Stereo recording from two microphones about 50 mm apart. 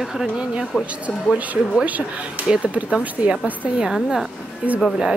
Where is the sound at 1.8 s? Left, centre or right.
Right.